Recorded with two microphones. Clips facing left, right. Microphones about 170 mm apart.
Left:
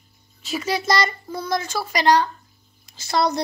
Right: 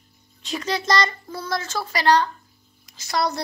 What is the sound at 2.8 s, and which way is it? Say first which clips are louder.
Speech: left 3 dB; 25° left (ahead or behind).